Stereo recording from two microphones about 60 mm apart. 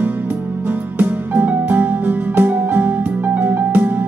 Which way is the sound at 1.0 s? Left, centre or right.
Right.